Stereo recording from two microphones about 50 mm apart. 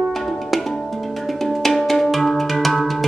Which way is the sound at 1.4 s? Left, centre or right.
Centre.